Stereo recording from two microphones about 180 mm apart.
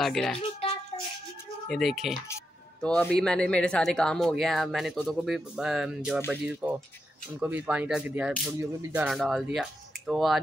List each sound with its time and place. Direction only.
0.0 s speech: centre (ahead or behind)
0.4 s a sound: 25° left (ahead or behind)
1.7 s speech: centre (ahead or behind)
3.2 s speech: 5° left (ahead or behind)